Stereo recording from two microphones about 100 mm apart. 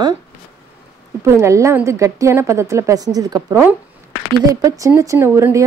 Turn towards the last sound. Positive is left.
turn(degrees=-25)  # may be behind; listen again after turning